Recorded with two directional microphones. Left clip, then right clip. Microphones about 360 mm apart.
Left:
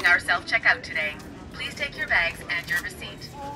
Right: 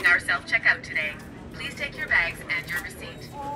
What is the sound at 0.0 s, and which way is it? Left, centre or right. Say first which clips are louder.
A woman's voice: left 1 dB; centre.